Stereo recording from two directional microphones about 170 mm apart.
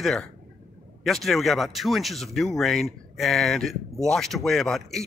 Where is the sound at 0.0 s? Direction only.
Centre (ahead or behind).